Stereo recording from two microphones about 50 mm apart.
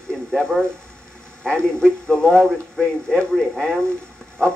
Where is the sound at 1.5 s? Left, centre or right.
Centre.